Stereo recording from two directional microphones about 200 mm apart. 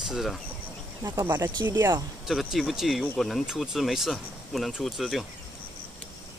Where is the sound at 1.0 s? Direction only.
15° right (ahead or behind).